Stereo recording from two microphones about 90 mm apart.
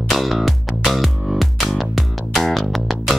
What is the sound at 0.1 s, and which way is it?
Music, centre (ahead or behind).